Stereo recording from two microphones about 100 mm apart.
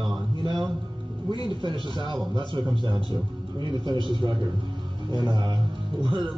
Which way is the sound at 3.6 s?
55° right (ahead or behind).